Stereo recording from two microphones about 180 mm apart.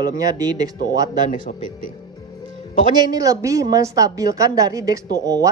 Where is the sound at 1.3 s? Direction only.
50° left (ahead or behind).